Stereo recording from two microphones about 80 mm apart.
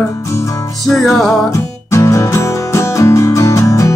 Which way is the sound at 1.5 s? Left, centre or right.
Left.